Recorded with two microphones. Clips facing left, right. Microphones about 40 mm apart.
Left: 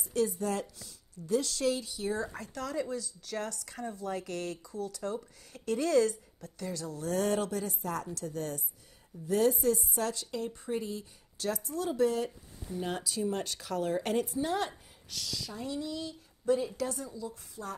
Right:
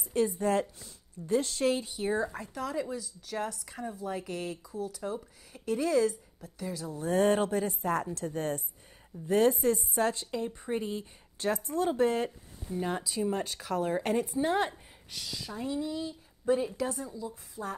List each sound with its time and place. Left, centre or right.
0.1 s a woman's voice: right
2.3 s speech: centre
7.0 s a woman's voice: right
13.0 s speech: centre
14.4 s speech: right